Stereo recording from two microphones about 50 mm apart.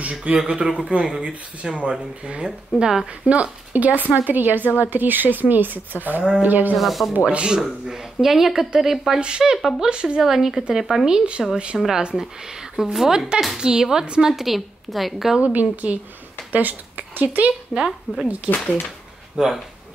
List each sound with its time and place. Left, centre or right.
0.0 s speech: right; by 3.1 s centre
3.3 s a woman's voice: right
6.8 s a woman's voice: centre
7.2 s speech: centre
7.9 s speech: centre
9.2 s speech: centre
10.2 s a woman's voice: centre
11.1 s speech: centre
14.3 s a woman's voice: centre
15.4 s speech: right
17.7 s speech: centre
19.3 s speech: centre